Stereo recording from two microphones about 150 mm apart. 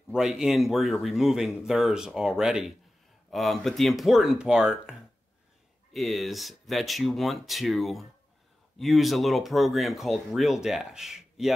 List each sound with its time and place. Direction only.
0.1 s speech: 5° right (ahead or behind)
5.9 s speech: centre (ahead or behind)